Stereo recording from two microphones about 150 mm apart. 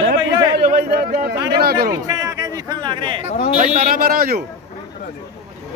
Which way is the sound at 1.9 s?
20° right (ahead or behind).